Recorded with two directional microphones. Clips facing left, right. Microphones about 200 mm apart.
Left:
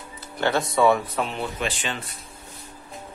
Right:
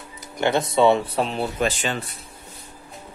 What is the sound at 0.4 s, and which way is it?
Speech, 20° right (ahead or behind).